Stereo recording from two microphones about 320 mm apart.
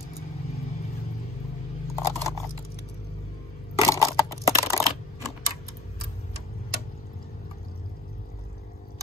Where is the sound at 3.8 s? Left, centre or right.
Centre.